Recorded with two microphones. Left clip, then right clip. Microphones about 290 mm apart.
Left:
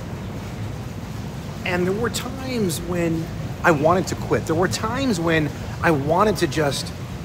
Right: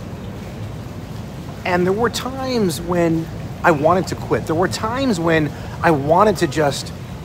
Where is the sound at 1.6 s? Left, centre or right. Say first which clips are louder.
Right 5 dB; centre.